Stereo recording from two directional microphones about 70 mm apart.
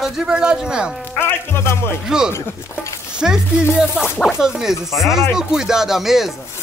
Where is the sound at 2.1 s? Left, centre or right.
Centre.